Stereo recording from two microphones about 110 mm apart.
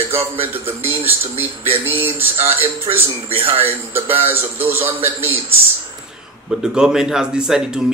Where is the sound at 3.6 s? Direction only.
20° right (ahead or behind).